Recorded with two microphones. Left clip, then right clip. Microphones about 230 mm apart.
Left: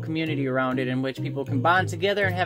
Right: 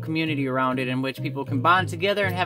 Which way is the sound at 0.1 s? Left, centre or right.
Right.